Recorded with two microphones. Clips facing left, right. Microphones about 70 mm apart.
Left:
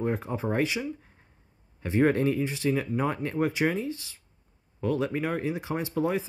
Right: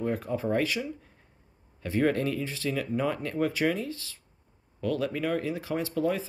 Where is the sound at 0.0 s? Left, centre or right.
Left.